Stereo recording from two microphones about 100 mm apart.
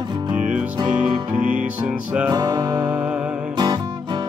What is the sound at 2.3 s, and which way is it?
Music, 40° right (ahead or behind).